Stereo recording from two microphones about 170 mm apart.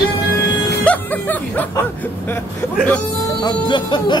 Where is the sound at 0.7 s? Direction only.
10° left (ahead or behind).